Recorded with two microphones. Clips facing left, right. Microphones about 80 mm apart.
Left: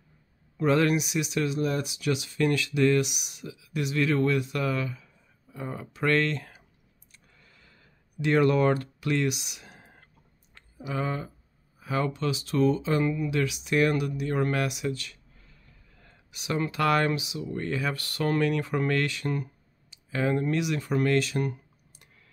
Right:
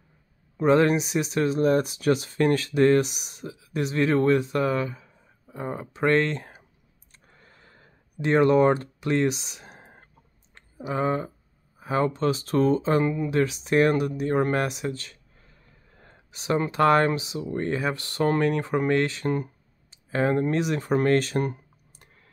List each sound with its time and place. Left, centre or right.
0.6 s speech: right
7.1 s a sound: right
10.5 s speech: right